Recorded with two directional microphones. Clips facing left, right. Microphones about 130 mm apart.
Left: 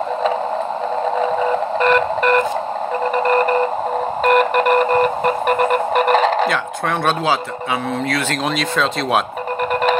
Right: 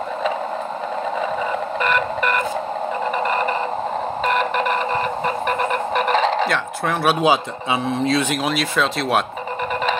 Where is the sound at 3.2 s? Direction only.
45° left (ahead or behind).